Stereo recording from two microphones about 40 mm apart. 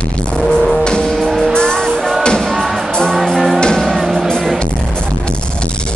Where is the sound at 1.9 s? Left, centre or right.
Centre.